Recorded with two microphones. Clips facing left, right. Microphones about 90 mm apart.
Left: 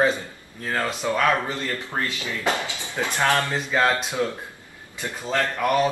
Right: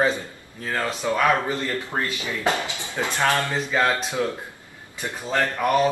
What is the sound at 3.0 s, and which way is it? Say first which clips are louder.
Speech: even; 5° right (ahead or behind).